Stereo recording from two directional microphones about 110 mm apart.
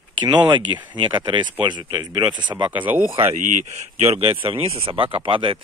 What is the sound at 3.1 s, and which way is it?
Speech, 55° right (ahead or behind).